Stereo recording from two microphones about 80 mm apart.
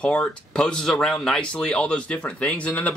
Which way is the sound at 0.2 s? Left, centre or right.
Centre.